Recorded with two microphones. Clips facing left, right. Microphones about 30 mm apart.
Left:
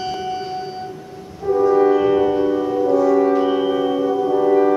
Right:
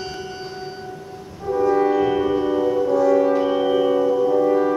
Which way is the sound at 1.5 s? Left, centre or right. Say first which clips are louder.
Left 4 dB; centre.